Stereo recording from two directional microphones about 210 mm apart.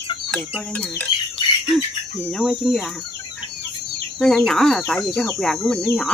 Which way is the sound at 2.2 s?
Centre (ahead or behind).